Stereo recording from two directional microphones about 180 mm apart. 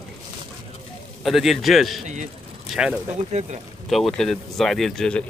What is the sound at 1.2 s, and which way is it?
Speech, centre (ahead or behind).